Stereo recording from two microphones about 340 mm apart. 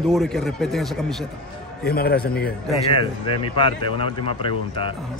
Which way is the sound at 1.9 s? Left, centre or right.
Left.